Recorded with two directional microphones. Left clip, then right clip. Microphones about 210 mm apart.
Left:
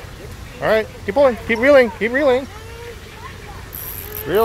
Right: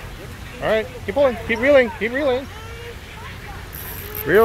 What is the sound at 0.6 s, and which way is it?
Speech, 25° left (ahead or behind).